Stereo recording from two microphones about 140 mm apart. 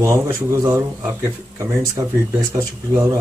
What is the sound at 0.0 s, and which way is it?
Speech, 20° right (ahead or behind).